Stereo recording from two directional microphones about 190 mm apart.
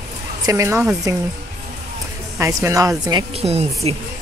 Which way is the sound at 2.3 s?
15° right (ahead or behind).